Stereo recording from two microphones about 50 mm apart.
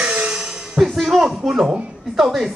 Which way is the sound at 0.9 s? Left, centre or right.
Centre.